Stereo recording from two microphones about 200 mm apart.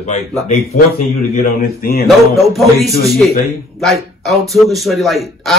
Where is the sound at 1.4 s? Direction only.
45° left (ahead or behind).